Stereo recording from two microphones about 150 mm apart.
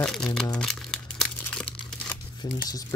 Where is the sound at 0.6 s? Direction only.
5° left (ahead or behind).